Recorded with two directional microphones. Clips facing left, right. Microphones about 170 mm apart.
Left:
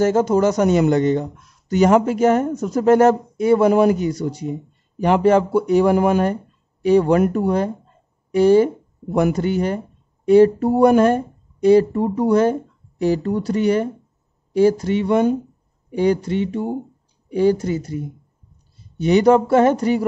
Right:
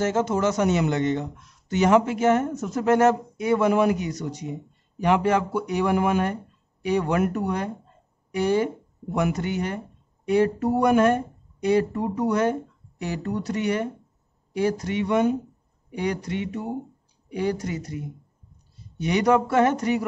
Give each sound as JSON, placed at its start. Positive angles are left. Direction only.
{"t": 0.0, "sound": "speech", "side_deg": 35}